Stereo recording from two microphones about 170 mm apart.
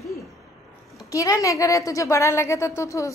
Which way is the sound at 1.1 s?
20° left (ahead or behind).